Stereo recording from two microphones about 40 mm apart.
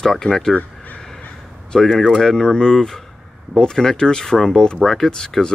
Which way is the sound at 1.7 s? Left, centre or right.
Centre.